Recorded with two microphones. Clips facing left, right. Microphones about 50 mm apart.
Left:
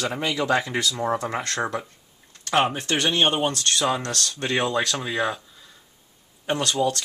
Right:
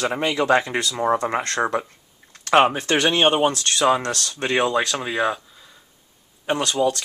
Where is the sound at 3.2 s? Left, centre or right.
Centre.